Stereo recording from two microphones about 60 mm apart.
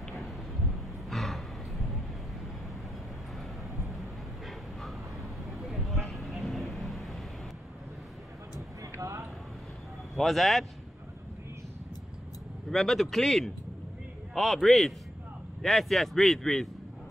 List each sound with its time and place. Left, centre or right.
0.7 s a sound: centre
3.8 s dog: centre
4.8 s vehicle: centre
8.5 s a sound: right
10.1 s speech: centre
12.6 s a man's voice: centre